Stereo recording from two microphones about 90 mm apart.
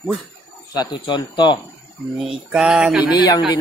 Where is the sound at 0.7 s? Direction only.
55° left (ahead or behind).